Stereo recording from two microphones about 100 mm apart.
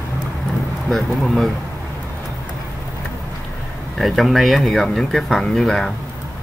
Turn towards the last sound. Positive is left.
turn(degrees=5)  # may be behind; listen again after turning